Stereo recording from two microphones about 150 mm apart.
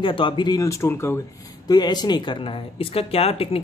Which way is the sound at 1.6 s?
25° left (ahead or behind).